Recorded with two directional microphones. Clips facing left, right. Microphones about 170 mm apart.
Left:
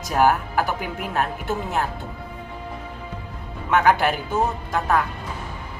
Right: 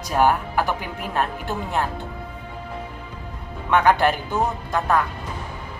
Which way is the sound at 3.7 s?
5° left (ahead or behind).